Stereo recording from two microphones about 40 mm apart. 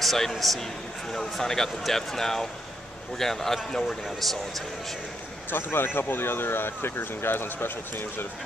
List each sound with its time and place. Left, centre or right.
0.0 s a man's voice: centre
5.5 s speech: left